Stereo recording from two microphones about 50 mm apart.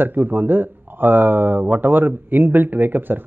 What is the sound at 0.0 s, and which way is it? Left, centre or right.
Speech, right.